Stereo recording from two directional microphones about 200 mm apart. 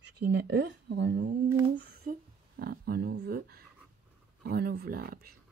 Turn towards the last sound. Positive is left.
turn(degrees=-50)  # may be behind; listen again after turning